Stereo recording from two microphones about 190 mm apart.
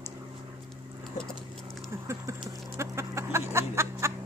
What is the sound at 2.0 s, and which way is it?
Chicken, 15° right (ahead or behind).